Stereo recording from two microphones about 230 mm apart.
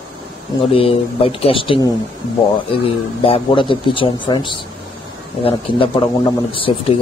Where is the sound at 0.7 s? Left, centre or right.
Left.